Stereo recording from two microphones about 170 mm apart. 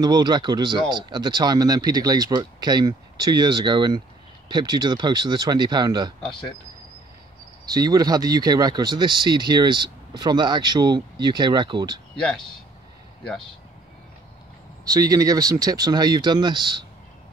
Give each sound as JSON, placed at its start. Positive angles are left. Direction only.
{"t": 0.0, "sound": "speech", "side_deg": -25}
{"t": 7.6, "sound": "speech", "side_deg": -20}
{"t": 14.9, "sound": "speech", "side_deg": -20}